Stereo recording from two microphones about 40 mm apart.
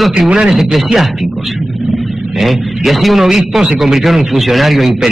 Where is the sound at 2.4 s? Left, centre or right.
Centre.